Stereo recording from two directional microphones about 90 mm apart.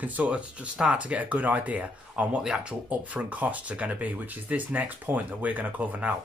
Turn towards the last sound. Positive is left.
turn(degrees=-15)  # may be behind; listen again after turning